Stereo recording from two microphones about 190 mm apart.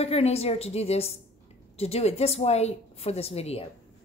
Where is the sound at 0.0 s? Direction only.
30° left (ahead or behind).